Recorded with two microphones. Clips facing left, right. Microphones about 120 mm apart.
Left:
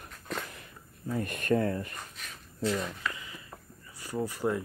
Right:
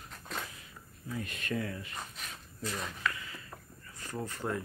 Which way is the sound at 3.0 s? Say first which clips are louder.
Right 1 dB; 20° left (ahead or behind).